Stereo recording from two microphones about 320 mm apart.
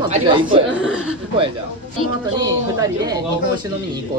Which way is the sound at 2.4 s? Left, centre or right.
Centre.